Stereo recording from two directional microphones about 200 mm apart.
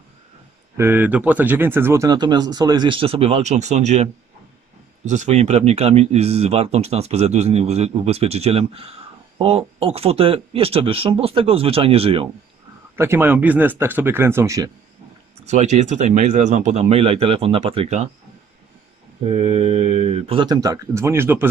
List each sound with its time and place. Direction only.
0.7 s speech: 10° right (ahead or behind); by 12.3 s 30° right (ahead or behind)
12.9 s speech: 10° right (ahead or behind)
15.4 s speech: 35° right (ahead or behind)
19.2 s speech: 30° right (ahead or behind); by 21.5 s 10° right (ahead or behind)